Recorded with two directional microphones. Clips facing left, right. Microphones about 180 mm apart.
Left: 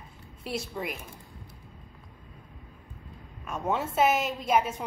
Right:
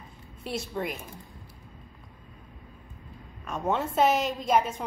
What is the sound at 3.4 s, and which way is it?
Speech, 5° left (ahead or behind).